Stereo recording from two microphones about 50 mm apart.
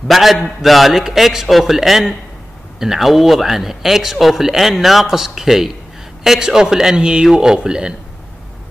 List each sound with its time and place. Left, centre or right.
0.1 s a man's voice: centre